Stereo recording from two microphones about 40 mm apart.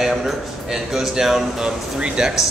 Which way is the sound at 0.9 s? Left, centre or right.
Centre.